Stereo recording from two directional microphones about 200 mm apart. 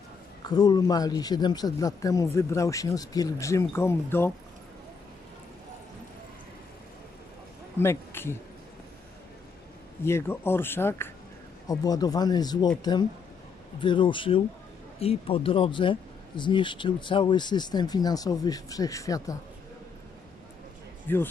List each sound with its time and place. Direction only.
0.4 s speech: 20° left (ahead or behind)
7.8 s speech: 10° left (ahead or behind)
10.0 s speech: 10° left (ahead or behind)
13.7 s speech: 25° left (ahead or behind)
21.1 s speech: 10° left (ahead or behind)